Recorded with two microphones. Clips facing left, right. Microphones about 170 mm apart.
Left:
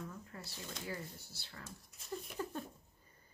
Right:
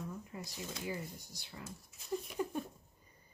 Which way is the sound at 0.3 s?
15° right (ahead or behind).